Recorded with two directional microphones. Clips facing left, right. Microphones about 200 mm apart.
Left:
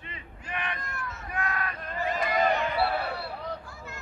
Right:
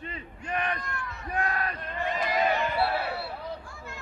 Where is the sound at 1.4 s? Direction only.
35° right (ahead or behind).